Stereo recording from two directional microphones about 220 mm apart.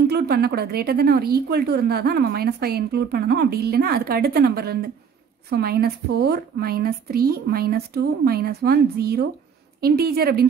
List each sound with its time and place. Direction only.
0.1 s speech: 45° right (ahead or behind)